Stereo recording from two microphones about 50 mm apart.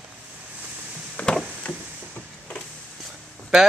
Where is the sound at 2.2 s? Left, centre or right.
Left.